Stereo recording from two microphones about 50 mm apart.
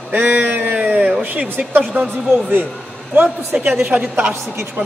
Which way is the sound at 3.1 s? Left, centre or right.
Right.